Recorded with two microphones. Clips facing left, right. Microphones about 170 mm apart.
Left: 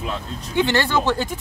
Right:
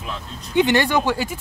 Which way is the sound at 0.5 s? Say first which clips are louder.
Right 2 dB; 15° right (ahead or behind).